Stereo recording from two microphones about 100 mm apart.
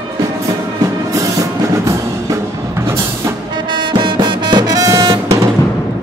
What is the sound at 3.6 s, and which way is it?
Music, 50° right (ahead or behind).